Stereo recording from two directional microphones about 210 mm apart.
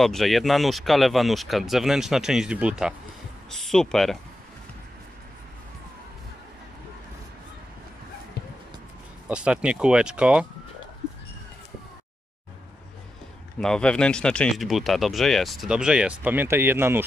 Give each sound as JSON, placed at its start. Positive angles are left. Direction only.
{"t": 0.0, "sound": "speech", "side_deg": 0}
{"t": 8.4, "sound": "music", "side_deg": 50}
{"t": 9.3, "sound": "speech", "side_deg": -5}
{"t": 13.6, "sound": "speech", "side_deg": 5}